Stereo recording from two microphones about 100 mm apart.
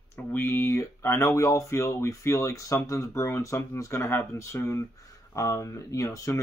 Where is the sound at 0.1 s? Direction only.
25° left (ahead or behind).